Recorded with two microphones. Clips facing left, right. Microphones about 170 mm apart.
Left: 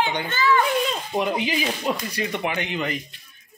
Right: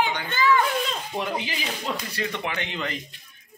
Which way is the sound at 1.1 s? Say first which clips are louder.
Left 7 dB; 15° left (ahead or behind).